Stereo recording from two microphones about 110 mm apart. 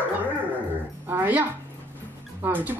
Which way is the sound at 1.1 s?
15° right (ahead or behind).